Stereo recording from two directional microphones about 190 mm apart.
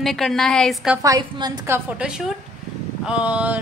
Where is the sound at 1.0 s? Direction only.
20° right (ahead or behind).